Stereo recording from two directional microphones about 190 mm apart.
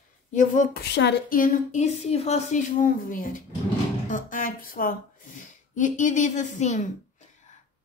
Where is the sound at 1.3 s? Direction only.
45° left (ahead or behind).